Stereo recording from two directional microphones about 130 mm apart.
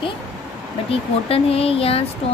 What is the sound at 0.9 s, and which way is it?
Speech, 50° left (ahead or behind).